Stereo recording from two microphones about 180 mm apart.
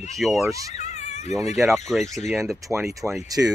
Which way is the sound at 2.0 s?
40° left (ahead or behind).